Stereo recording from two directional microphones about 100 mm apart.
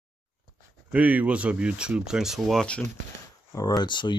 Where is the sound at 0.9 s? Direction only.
15° right (ahead or behind).